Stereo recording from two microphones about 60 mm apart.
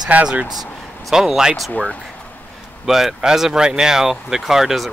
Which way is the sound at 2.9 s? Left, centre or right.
Centre.